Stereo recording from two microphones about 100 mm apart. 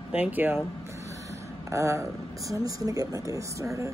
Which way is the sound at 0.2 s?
20° right (ahead or behind).